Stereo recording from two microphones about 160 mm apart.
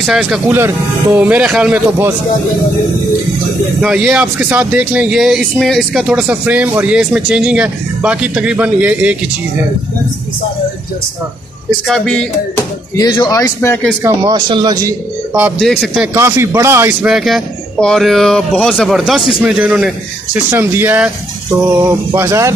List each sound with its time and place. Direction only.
0.0 s speech: 5° right (ahead or behind)
3.8 s speech: 5° right (ahead or behind)
11.9 s speech: 5° left (ahead or behind)
12.9 s speech: 25° left (ahead or behind)
14.3 s a man's voice: 30° right (ahead or behind)
15.6 s speech: centre (ahead or behind)
16.1 s speech: 15° right (ahead or behind)
17.0 s speech: centre (ahead or behind); by 22.5 s 15° right (ahead or behind)